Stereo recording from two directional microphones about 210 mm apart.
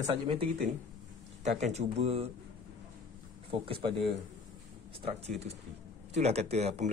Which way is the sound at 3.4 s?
25° right (ahead or behind).